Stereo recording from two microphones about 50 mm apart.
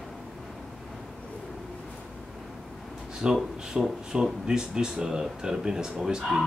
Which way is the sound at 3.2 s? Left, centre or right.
Centre.